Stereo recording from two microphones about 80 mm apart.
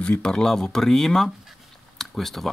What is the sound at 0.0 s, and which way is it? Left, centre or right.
Speech, centre.